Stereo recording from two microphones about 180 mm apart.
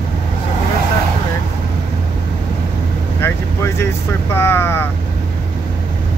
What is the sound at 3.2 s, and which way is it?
Vehicle, 15° left (ahead or behind).